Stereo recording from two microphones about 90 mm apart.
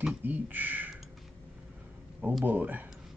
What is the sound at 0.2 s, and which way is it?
Speech, 20° right (ahead or behind).